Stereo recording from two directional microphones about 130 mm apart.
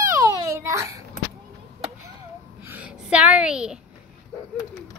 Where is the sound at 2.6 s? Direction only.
10° right (ahead or behind).